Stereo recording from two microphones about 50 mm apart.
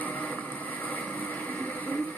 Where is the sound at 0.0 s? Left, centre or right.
Left.